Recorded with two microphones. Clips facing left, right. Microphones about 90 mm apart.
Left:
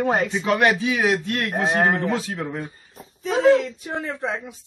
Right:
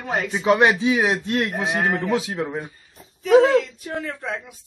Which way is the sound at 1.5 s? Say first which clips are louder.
Left 3 dB; 40° left (ahead or behind).